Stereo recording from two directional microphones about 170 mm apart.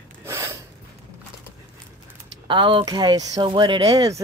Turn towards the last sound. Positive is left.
turn(degrees=-30)  # may be behind; listen again after turning